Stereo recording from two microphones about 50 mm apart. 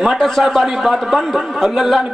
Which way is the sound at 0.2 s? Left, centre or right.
Centre.